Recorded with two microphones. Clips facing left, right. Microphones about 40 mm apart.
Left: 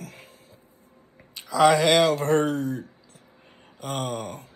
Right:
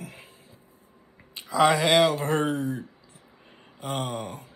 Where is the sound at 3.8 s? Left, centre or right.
Right.